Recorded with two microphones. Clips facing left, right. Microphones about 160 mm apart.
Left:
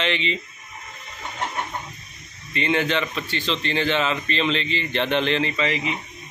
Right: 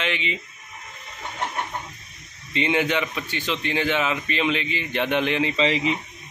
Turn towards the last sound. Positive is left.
turn(degrees=-30)  # may be behind; listen again after turning